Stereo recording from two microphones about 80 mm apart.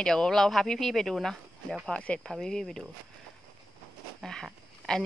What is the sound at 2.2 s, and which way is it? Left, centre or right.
Speech, centre.